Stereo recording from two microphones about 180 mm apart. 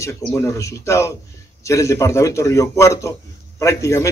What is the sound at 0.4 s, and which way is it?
A man's voice, 15° left (ahead or behind).